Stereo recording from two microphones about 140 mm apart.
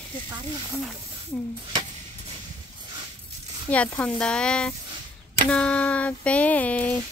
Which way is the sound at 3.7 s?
10° left (ahead or behind).